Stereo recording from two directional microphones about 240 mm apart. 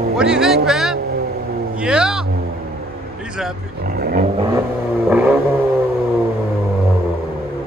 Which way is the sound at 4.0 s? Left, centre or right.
Right.